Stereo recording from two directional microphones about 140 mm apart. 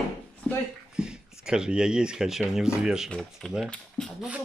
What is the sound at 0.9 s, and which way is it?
Speech, 5° right (ahead or behind).